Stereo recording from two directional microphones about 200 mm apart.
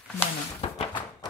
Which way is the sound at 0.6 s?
25° left (ahead or behind).